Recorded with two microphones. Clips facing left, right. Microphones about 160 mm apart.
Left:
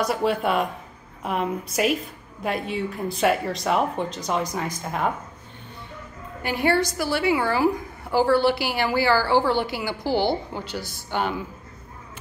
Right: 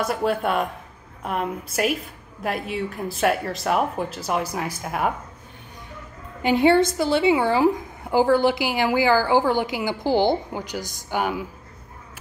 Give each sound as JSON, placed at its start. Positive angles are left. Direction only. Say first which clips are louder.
{"t": 0.0, "sound": "speech", "louder": "even", "side_deg": 0}
{"t": 6.4, "sound": "a woman's voice", "louder": "right 5 dB", "side_deg": -20}